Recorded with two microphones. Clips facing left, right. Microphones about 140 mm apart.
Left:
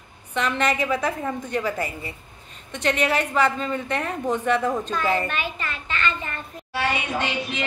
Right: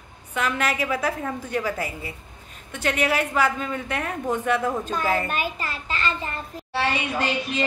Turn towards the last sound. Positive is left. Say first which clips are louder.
# right 1 dB
turn(degrees=-35)  # may be behind; listen again after turning